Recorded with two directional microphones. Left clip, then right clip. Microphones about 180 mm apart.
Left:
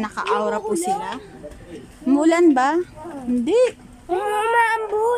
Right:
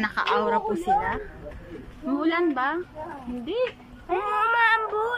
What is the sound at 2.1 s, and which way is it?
Speech, 35° left (ahead or behind).